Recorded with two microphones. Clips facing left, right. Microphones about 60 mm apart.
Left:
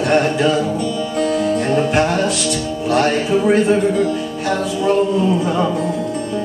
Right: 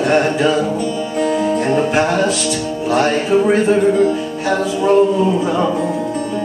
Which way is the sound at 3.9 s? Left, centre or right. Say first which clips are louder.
Right 4 dB; right.